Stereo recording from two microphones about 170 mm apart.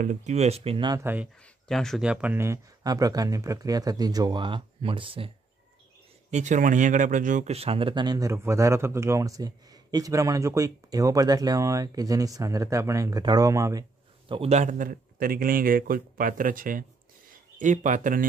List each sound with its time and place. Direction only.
0.0 s speech: 45° right (ahead or behind); by 1.0 s 25° right (ahead or behind)
1.0 s speech: 10° right (ahead or behind)
1.4 s speech: 5° left (ahead or behind); by 5.3 s 30° right (ahead or behind)
6.3 s speech: 45° right (ahead or behind); by 13.8 s 20° right (ahead or behind)
14.3 s speech: 40° right (ahead or behind)